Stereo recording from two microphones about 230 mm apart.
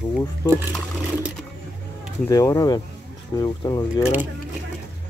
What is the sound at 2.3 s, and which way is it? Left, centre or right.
Speech, centre.